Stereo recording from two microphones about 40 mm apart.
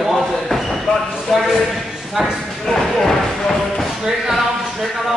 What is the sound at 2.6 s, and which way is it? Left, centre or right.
Speech, centre.